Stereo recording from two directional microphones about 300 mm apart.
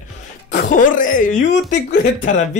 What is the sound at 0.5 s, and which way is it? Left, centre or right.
Speech, left.